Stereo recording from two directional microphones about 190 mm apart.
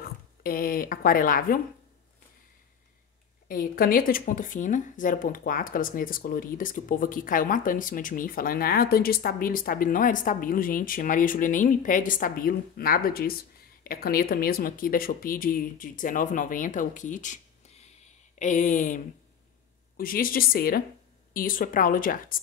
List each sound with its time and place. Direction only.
0.0 s speech: 50° left (ahead or behind)
3.4 s speech: 50° left (ahead or behind)
20.0 s speech: 50° left (ahead or behind)